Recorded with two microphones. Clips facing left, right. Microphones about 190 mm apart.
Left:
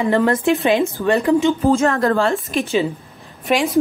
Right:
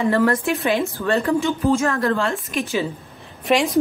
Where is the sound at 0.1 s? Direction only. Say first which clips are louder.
Left 3 dB; 20° left (ahead or behind).